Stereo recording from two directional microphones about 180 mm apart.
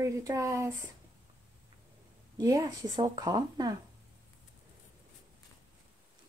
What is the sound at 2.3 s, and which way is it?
A woman's voice, 20° right (ahead or behind).